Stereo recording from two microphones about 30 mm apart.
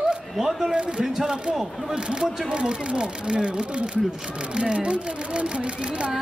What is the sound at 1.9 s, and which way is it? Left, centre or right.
Speech, right.